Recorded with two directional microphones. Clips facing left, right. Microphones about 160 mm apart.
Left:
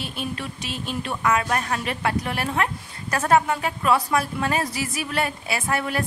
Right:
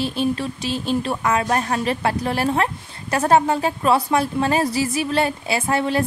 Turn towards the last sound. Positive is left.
turn(degrees=-30)  # may be behind; listen again after turning